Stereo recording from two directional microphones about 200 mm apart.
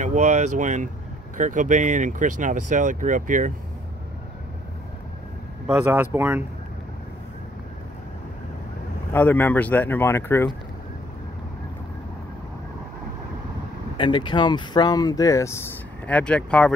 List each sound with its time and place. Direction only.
0.0 s speech: 35° right (ahead or behind)
5.7 s speech: 10° right (ahead or behind)
9.1 s speech: 10° left (ahead or behind)
13.9 s speech: 25° left (ahead or behind); by 16.7 s 5° left (ahead or behind)